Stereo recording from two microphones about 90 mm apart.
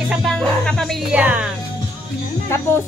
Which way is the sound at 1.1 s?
15° right (ahead or behind).